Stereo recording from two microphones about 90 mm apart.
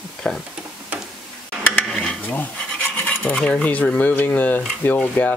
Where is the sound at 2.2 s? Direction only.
20° left (ahead or behind).